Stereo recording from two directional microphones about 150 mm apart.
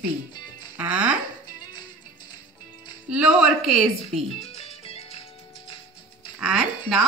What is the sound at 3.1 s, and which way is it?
A woman's voice, 10° right (ahead or behind).